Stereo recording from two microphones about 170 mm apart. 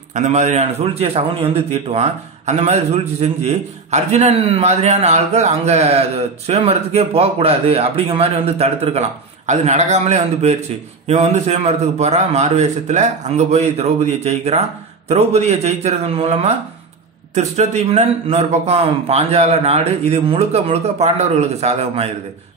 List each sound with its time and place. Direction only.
0.1 s a man's voice: 45° right (ahead or behind)